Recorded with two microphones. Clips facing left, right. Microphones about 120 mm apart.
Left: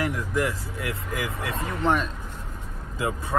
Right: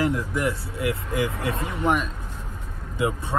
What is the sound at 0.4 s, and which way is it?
Speech, 25° right (ahead or behind).